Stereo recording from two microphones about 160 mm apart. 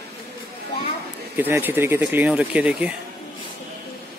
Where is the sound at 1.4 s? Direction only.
15° right (ahead or behind).